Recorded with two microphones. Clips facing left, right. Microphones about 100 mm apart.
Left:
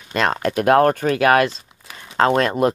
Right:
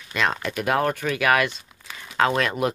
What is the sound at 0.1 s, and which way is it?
Speech, 45° left (ahead or behind).